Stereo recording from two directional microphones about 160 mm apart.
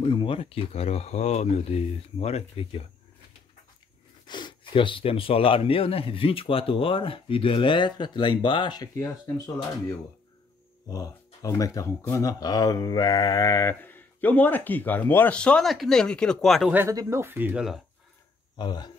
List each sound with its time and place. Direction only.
0.0 s speech: 35° left (ahead or behind)
4.3 s speech: 30° left (ahead or behind)
10.9 s speech: 20° left (ahead or behind); by 16.7 s centre (ahead or behind)
16.7 s speech: 15° right (ahead or behind)
18.6 s speech: 25° left (ahead or behind)